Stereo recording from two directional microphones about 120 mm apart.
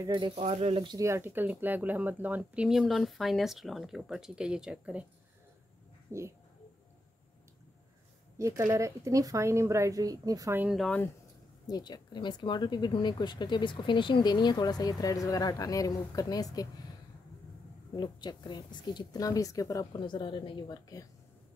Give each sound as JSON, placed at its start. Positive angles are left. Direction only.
{"t": 0.4, "sound": "speech", "side_deg": -65}
{"t": 0.8, "sound": "speech", "side_deg": -25}
{"t": 6.1, "sound": "speech", "side_deg": -25}
{"t": 8.4, "sound": "speech", "side_deg": -25}
{"t": 11.6, "sound": "speech", "side_deg": 35}
{"t": 17.9, "sound": "speech", "side_deg": 40}